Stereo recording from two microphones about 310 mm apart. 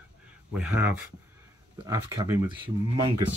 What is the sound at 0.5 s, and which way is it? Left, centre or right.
Speech, centre.